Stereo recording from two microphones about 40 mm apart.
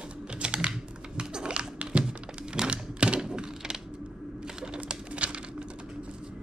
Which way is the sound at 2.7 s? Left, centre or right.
Right.